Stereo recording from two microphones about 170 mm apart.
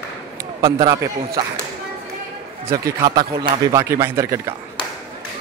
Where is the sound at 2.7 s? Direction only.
20° right (ahead or behind).